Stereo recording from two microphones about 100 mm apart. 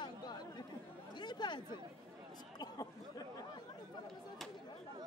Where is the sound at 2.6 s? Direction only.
40° left (ahead or behind).